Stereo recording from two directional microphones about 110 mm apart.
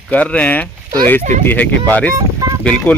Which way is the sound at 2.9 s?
15° left (ahead or behind).